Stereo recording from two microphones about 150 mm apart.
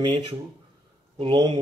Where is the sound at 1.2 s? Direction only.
35° right (ahead or behind).